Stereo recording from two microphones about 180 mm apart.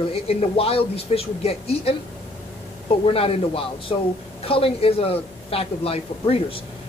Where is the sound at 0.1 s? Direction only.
35° left (ahead or behind).